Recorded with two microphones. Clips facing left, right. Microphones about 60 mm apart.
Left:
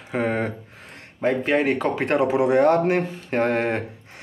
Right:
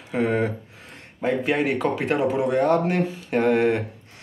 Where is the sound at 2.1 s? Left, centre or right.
Centre.